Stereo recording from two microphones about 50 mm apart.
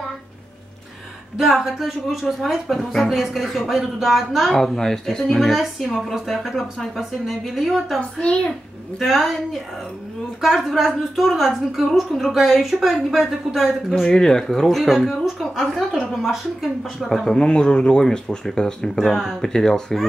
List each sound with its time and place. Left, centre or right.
1.4 s a woman's voice: centre
5.5 s a woman's voice: centre
8.0 s a child's voice: left
9.0 s a woman's voice: centre
14.0 s a woman's voice: centre
17.3 s speech: centre
18.9 s speech: centre
19.4 s speech: centre